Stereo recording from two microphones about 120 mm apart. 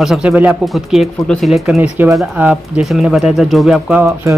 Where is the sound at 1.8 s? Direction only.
15° right (ahead or behind).